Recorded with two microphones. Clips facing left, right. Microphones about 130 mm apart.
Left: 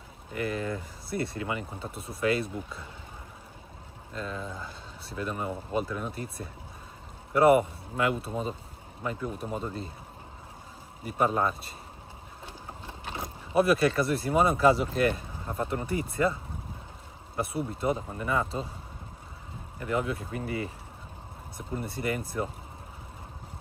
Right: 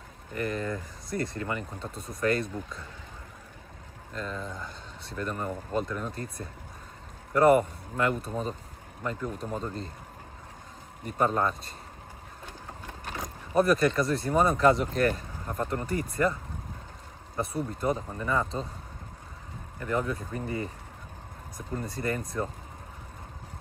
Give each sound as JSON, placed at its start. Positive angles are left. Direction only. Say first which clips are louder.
{"t": 0.3, "sound": "speech", "louder": "even", "side_deg": 10}
{"t": 4.1, "sound": "speech", "louder": "even", "side_deg": 5}
{"t": 7.3, "sound": "speech", "louder": "even", "side_deg": 10}
{"t": 11.1, "sound": "speech", "louder": "even", "side_deg": 10}
{"t": 12.8, "sound": "vehicle", "louder": "even", "side_deg": 25}
{"t": 13.2, "sound": "a sound", "louder": "even", "side_deg": 5}
{"t": 14.1, "sound": "speech", "louder": "even", "side_deg": 5}
{"t": 17.8, "sound": "speech", "louder": "even", "side_deg": 5}
{"t": 19.8, "sound": "speech", "louder": "even", "side_deg": 10}
{"t": 20.3, "sound": "speech", "louder": "even", "side_deg": -35}
{"t": 21.6, "sound": "speech", "louder": "even", "side_deg": 10}